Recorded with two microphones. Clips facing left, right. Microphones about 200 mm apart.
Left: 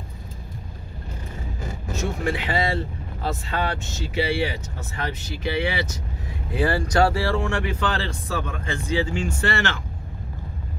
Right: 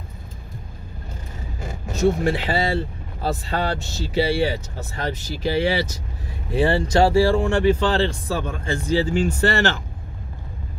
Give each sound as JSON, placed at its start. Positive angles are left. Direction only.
{"t": 2.0, "sound": "speech", "side_deg": -35}
{"t": 6.5, "sound": "speech", "side_deg": -25}